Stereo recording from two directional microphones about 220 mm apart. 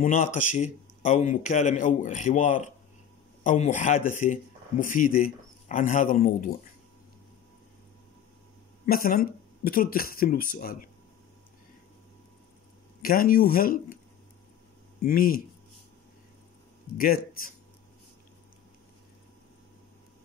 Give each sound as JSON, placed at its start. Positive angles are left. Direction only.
{"t": 0.0, "sound": "a man's voice", "side_deg": 35}
{"t": 8.8, "sound": "a man's voice", "side_deg": 40}
{"t": 13.0, "sound": "a man's voice", "side_deg": 40}
{"t": 15.0, "sound": "a man's voice", "side_deg": 40}
{"t": 16.9, "sound": "a man's voice", "side_deg": 40}